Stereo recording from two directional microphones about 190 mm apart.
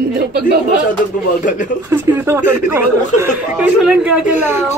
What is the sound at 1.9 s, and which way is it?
Speech, 10° right (ahead or behind).